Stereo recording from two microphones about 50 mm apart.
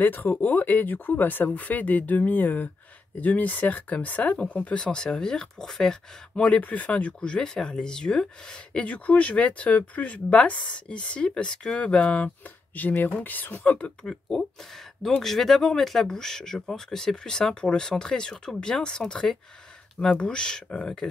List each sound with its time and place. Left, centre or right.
0.0 s speech: left; by 5.9 s centre
6.3 s speech: left
8.8 s speech: left
13.7 s speech: left
14.0 s speech: centre